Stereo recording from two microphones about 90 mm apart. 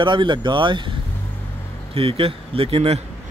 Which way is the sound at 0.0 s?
65° right (ahead or behind).